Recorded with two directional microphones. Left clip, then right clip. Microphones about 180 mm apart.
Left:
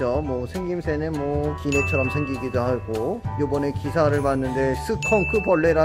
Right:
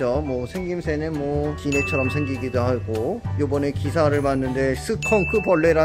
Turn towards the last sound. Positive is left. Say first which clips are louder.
# right 1 dB
turn(degrees=-15)  # may be behind; listen again after turning